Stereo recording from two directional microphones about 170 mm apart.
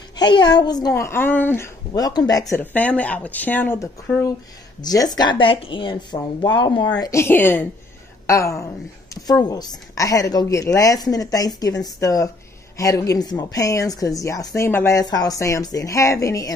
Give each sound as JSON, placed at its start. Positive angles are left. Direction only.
{"t": 0.1, "sound": "speech", "side_deg": 25}
{"t": 1.9, "sound": "speech", "side_deg": 25}